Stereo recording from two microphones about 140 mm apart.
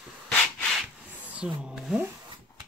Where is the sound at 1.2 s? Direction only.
10° right (ahead or behind).